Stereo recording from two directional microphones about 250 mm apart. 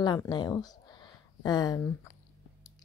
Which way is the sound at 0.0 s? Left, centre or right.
Centre.